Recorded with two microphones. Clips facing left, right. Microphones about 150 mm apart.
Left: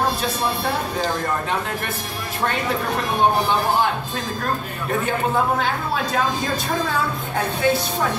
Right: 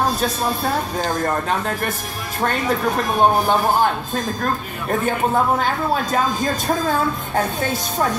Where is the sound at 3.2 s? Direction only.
45° right (ahead or behind).